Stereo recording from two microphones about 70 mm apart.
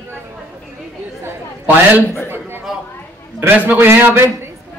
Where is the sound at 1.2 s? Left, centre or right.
Right.